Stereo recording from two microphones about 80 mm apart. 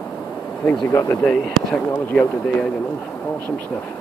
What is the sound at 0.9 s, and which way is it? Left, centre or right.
Speech, left.